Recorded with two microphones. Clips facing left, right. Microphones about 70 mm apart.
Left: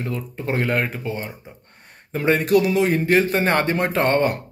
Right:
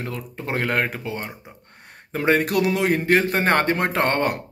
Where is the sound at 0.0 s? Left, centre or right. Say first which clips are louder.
Left 3 dB; right.